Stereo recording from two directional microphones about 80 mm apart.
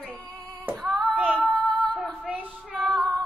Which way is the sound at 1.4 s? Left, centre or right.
Centre.